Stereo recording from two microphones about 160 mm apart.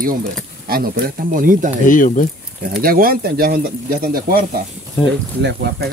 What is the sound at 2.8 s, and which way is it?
Speech, 65° right (ahead or behind).